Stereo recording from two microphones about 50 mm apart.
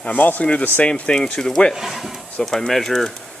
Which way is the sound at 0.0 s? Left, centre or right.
Left.